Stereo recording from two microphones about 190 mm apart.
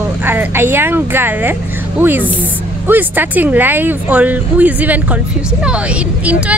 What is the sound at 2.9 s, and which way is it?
Speech, 10° right (ahead or behind).